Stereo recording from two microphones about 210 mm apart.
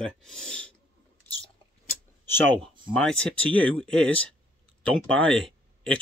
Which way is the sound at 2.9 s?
5° left (ahead or behind).